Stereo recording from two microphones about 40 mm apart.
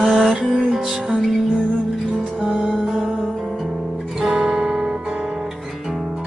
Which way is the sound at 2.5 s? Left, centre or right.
Centre.